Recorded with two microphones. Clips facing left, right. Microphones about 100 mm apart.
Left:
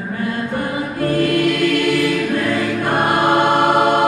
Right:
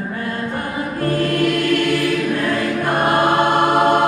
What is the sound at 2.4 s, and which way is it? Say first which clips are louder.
Choir: left 1 dB; 50° right (ahead or behind).